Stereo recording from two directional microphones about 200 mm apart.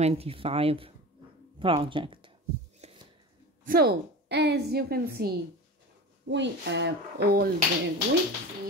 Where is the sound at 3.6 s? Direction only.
50° right (ahead or behind).